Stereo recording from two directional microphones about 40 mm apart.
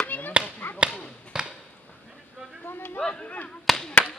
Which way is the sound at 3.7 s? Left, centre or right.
Centre.